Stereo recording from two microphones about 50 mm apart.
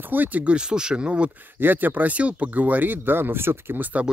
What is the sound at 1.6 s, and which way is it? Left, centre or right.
Speech, right.